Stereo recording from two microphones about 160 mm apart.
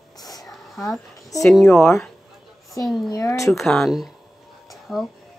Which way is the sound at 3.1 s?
20° left (ahead or behind).